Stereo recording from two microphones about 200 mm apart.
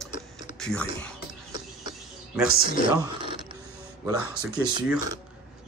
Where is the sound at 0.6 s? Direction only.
5° left (ahead or behind).